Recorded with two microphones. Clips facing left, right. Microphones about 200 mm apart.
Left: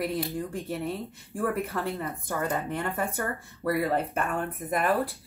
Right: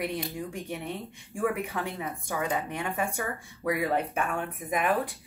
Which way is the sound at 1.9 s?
10° right (ahead or behind).